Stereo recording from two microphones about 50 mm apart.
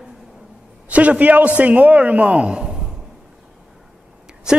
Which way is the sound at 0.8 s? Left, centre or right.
Right.